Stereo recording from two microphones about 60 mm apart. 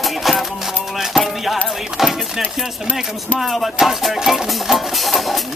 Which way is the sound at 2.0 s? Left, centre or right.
Centre.